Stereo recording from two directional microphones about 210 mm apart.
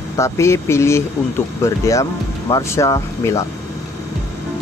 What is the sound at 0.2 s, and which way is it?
Speech, 15° left (ahead or behind).